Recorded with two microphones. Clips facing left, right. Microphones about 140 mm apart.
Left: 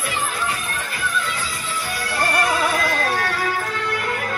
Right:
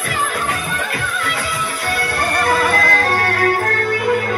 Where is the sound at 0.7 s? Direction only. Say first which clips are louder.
Right 3 dB; 70° right (ahead or behind).